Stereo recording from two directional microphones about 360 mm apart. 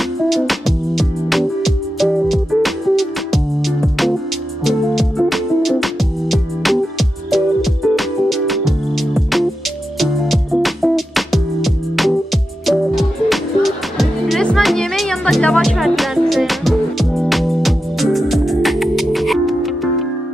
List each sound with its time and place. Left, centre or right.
0.3 s music: centre